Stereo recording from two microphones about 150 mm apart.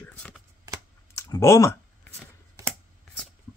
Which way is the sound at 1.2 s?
20° left (ahead or behind).